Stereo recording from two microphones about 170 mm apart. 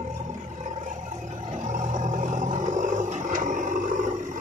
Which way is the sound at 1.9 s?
45° right (ahead or behind).